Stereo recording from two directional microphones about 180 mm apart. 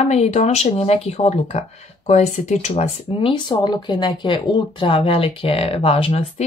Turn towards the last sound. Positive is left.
turn(degrees=35)  # may be behind; listen again after turning